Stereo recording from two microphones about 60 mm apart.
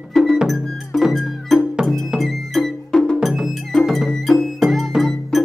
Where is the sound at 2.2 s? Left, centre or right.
Centre.